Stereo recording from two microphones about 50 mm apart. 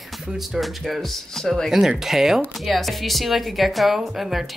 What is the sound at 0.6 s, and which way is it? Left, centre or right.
Speech, centre.